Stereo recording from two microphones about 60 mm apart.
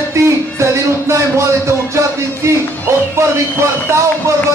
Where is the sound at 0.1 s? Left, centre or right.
Right.